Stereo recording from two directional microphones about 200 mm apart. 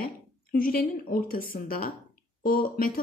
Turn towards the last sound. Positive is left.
turn(degrees=45)  # may be behind; listen again after turning